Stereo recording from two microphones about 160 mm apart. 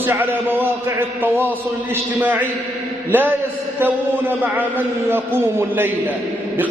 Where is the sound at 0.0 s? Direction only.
15° right (ahead or behind).